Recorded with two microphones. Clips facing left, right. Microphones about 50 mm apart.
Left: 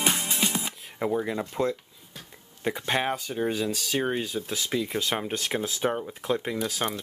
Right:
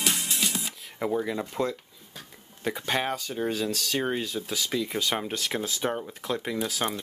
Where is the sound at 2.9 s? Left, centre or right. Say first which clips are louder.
Left 1 dB; centre.